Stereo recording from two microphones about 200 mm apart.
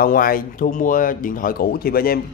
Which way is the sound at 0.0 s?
45° left (ahead or behind).